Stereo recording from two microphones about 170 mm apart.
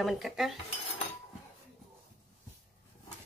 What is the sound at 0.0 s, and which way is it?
Speech, centre (ahead or behind).